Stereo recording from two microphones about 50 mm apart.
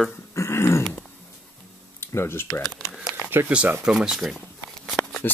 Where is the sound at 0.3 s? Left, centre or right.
Left.